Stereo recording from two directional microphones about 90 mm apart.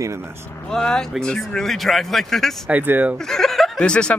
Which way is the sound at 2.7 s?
15° right (ahead or behind).